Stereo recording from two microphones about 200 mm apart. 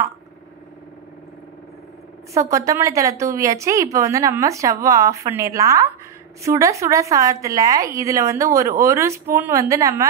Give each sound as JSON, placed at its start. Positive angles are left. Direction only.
{"t": 2.3, "sound": "a woman's voice", "side_deg": -15}